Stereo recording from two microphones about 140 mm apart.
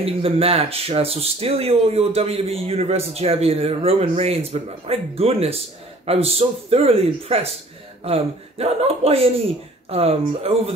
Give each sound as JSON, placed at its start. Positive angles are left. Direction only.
{"t": 0.0, "sound": "speech", "side_deg": -45}